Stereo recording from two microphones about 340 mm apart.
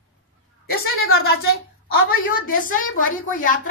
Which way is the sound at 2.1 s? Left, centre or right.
Left.